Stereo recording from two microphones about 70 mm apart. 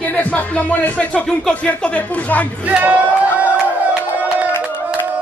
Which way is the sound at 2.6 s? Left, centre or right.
Right.